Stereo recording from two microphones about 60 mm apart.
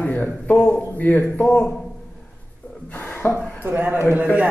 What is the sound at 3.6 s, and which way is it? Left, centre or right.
Speech, right.